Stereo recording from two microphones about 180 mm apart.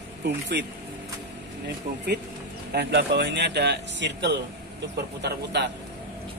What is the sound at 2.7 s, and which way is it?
Speech, 65° right (ahead or behind).